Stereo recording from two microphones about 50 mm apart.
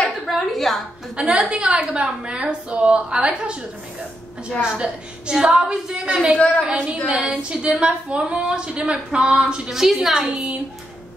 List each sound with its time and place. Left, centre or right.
0.3 s a sound: centre
1.1 s a woman's voice: right
6.3 s a woman's voice: left
6.6 s a woman's voice: right
9.7 s a woman's voice: centre